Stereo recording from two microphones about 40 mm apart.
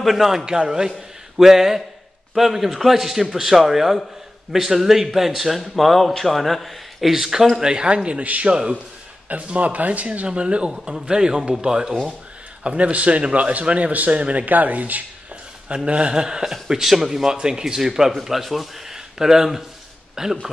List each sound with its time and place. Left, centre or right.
0.0 s a man's voice: centre
7.5 s a man's voice: right
11.1 s a man's voice: centre
12.6 s a man's voice: right
15.7 s a man's voice: right; by 18.9 s centre
18.9 s a man's voice: centre